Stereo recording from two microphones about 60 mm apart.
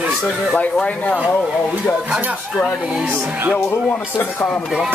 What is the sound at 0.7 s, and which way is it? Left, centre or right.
Speech, left.